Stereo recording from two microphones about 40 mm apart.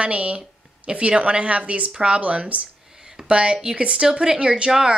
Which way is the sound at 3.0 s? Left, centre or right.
Centre.